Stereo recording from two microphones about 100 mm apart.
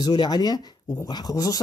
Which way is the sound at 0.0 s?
40° left (ahead or behind).